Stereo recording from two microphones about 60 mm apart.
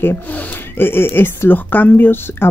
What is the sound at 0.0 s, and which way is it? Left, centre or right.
Speech, left.